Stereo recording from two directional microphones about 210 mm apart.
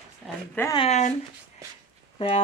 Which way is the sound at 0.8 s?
35° left (ahead or behind).